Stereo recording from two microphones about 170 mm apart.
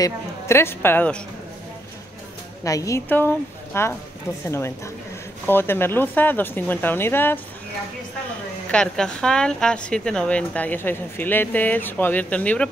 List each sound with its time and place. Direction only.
0.0 s a woman's voice: 15° left (ahead or behind)
2.6 s a woman's voice: 20° left (ahead or behind)
8.6 s a woman's voice: 5° left (ahead or behind)